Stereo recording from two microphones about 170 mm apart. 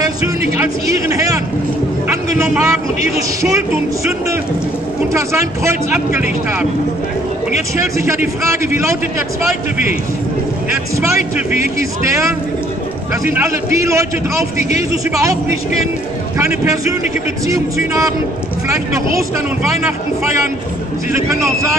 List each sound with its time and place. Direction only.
0.6 s speech: 20° right (ahead or behind)
2.0 s a sound: 15° right (ahead or behind)
5.1 s a man's voice: 15° right (ahead or behind)
7.7 s a man's voice: 15° right (ahead or behind)
11.0 s a man's voice: 15° right (ahead or behind)
16.3 s a man's voice: 15° right (ahead or behind)
21.1 s a man's voice: 15° right (ahead or behind)